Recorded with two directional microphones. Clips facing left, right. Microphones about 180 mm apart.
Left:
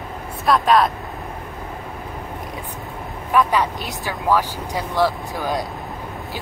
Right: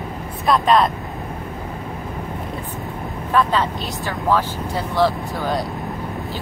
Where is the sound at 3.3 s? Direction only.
10° left (ahead or behind).